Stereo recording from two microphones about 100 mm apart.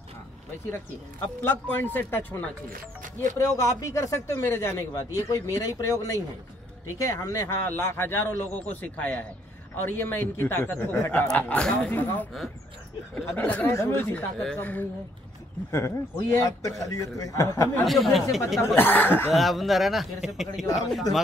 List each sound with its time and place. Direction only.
1.2 s a man's voice: 20° left (ahead or behind)
15.7 s speech: 30° left (ahead or behind)
17.8 s speech: centre (ahead or behind)
18.8 s a man's voice: 20° left (ahead or behind)
19.3 s speech: centre (ahead or behind)